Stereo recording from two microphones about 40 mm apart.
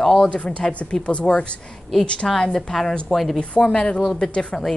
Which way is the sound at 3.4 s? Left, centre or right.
Left.